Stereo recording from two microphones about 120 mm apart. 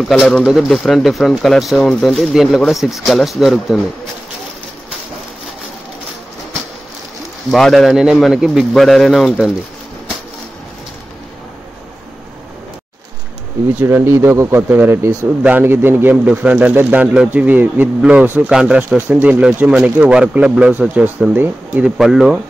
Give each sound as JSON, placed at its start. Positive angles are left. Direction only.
{"t": 0.4, "sound": "speech", "side_deg": -5}
{"t": 7.5, "sound": "speech", "side_deg": 5}
{"t": 13.7, "sound": "speech", "side_deg": -20}
{"t": 18.9, "sound": "speech", "side_deg": -15}
{"t": 21.9, "sound": "speech", "side_deg": -5}